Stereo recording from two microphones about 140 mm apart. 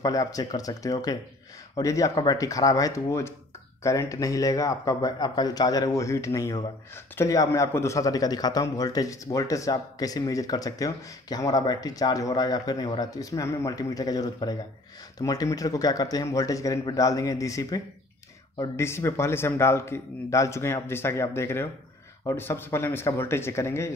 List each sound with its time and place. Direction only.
0.0 s a man's voice: 25° left (ahead or behind)